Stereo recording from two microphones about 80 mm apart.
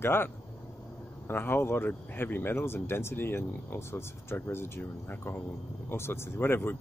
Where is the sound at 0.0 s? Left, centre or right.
Left.